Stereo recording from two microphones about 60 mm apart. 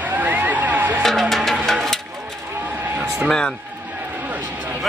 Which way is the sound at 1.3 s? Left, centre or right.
Centre.